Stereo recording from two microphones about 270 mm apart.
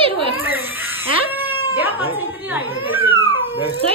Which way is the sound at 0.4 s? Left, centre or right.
Centre.